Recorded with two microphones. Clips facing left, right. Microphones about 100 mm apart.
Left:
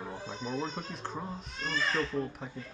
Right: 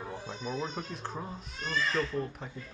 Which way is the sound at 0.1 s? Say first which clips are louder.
Even; centre (ahead or behind).